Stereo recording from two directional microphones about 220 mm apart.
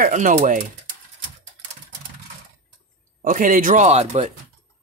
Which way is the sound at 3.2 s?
35° right (ahead or behind).